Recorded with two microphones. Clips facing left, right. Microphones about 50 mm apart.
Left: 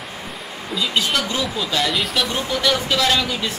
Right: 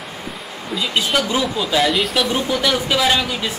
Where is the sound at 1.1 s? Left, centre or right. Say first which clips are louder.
Right 3 dB; centre.